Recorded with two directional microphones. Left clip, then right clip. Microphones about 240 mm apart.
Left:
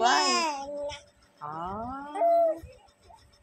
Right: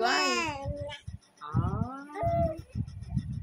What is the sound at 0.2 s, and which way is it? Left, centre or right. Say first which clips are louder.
Babbling: left 3 dB; centre.